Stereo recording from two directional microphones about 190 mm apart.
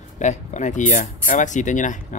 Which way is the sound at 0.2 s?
40° left (ahead or behind).